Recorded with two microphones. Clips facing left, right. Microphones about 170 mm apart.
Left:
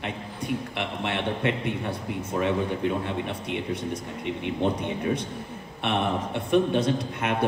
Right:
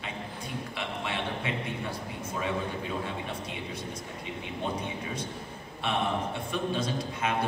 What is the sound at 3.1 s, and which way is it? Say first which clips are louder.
Speech: left 6 dB; 65° left (ahead or behind).